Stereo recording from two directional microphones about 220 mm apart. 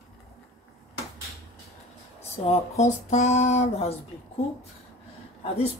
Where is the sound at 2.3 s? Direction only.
30° left (ahead or behind).